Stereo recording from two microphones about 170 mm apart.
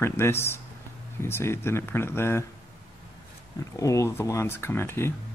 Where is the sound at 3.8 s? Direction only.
20° left (ahead or behind).